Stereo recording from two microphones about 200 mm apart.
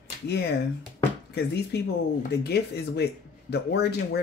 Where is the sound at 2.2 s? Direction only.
55° left (ahead or behind).